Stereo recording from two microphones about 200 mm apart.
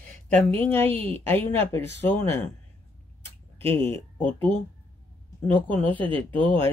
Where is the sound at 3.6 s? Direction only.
10° left (ahead or behind).